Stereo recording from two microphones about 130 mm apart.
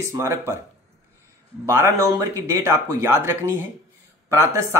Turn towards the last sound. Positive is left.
turn(degrees=-25)  # may be behind; listen again after turning